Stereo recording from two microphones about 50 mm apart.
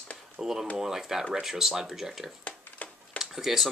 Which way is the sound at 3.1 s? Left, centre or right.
Centre.